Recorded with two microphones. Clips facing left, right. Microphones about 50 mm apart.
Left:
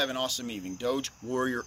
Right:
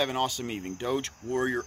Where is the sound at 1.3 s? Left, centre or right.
Centre.